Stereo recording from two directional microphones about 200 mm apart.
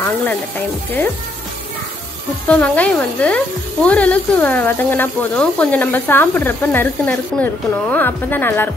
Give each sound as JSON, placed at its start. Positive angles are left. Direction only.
{"t": 0.0, "sound": "music", "side_deg": 10}
{"t": 2.4, "sound": "speech", "side_deg": 5}